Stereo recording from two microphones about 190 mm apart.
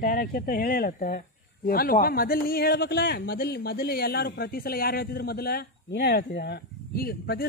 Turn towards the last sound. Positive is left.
turn(degrees=55)  # may be behind; listen again after turning